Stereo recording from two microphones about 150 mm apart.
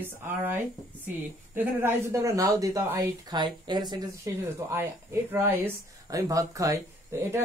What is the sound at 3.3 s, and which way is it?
Speech, 30° right (ahead or behind).